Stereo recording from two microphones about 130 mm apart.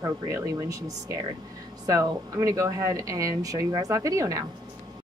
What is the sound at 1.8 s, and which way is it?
Speech, 25° right (ahead or behind).